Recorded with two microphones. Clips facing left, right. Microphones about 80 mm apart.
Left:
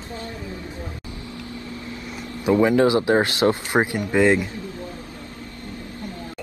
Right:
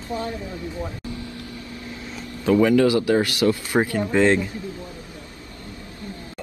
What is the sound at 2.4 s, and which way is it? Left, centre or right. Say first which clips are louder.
Speech: even; left.